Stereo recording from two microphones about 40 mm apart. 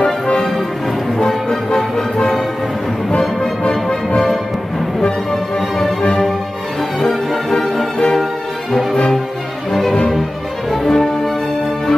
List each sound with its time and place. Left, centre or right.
1.1 s music: centre
3.1 s music: left
5.3 s music: centre
7.4 s music: centre
9.7 s music: centre